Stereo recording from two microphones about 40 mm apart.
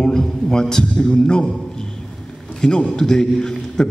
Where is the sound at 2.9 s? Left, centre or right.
Centre.